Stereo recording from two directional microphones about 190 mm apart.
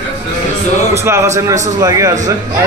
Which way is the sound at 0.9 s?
15° right (ahead or behind).